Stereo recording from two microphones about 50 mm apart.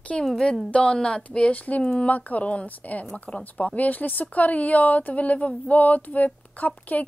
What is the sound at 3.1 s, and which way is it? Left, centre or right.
Speech, centre.